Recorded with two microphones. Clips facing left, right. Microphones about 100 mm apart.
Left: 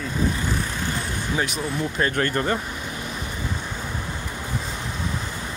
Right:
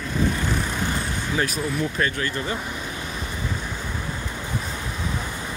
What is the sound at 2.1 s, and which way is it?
Speech, 50° left (ahead or behind).